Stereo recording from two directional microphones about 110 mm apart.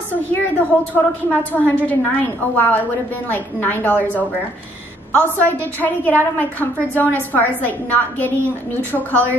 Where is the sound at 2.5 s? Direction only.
15° left (ahead or behind).